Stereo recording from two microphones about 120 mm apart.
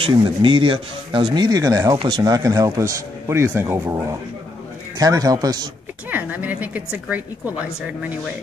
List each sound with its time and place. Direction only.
0.0 s speech: 40° right (ahead or behind)
1.6 s a man's voice: 25° right (ahead or behind)
6.0 s a woman's voice: 15° right (ahead or behind)